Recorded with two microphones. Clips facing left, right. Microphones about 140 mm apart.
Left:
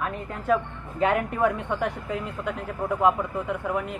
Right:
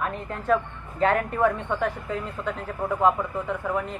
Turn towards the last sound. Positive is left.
turn(degrees=10)  # may be behind; listen again after turning